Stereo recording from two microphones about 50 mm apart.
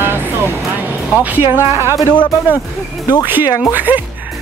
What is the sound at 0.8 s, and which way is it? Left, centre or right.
Music, right.